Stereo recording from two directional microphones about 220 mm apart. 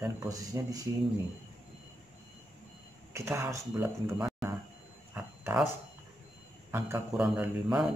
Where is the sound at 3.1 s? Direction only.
10° right (ahead or behind).